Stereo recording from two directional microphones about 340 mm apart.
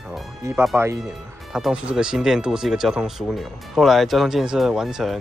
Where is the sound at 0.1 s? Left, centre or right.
Centre.